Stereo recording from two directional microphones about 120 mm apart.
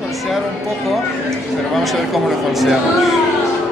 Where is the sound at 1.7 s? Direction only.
Centre (ahead or behind).